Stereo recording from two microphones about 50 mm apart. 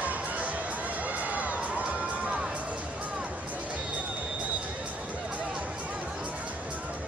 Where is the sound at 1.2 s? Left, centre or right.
Right.